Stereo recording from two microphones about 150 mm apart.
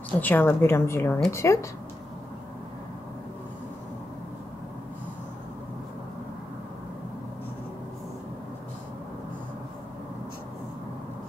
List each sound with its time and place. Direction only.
0.2 s a woman's voice: 10° left (ahead or behind)